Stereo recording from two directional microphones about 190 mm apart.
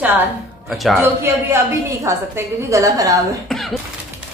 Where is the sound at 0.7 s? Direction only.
Centre (ahead or behind).